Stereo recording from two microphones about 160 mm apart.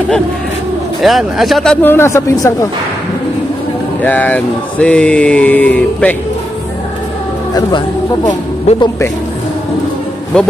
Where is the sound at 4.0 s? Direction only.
10° left (ahead or behind).